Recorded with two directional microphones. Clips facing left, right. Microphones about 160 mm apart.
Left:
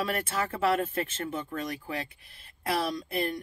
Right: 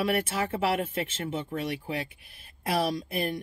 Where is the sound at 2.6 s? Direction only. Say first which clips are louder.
Right 2 dB; 25° right (ahead or behind).